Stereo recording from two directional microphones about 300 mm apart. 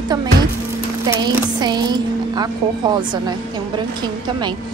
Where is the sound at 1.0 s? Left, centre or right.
Centre.